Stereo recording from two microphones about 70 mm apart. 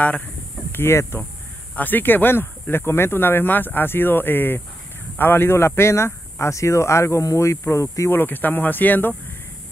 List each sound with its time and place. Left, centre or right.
0.7 s speech: left
8.1 s speech: left